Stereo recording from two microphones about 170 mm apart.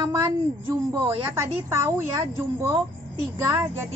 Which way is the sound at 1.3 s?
15° right (ahead or behind).